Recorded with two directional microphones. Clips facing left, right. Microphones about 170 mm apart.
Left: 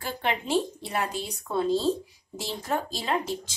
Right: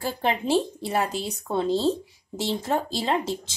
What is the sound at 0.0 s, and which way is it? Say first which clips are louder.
A woman's voice: right 4 dB; 30° right (ahead or behind).